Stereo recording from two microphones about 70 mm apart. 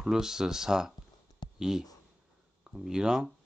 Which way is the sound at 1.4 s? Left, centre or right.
Left.